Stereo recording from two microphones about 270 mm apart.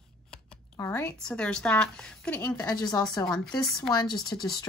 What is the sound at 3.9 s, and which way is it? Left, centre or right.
Speech, centre.